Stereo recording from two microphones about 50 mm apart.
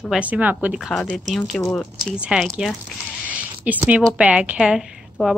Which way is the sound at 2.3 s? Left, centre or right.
Right.